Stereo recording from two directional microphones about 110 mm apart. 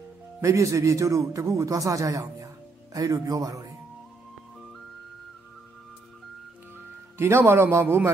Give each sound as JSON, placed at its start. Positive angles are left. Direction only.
{"t": 0.4, "sound": "a man's voice", "side_deg": -25}
{"t": 7.2, "sound": "a man's voice", "side_deg": -20}